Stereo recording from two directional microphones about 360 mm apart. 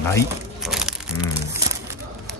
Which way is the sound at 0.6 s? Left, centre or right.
Centre.